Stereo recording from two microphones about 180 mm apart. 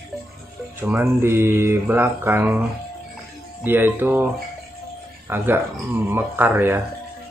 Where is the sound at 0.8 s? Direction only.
10° right (ahead or behind).